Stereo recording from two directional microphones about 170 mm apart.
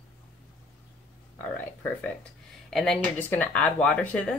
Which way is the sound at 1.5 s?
10° left (ahead or behind).